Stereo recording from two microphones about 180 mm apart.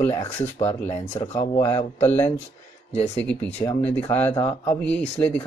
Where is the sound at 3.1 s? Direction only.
10° left (ahead or behind).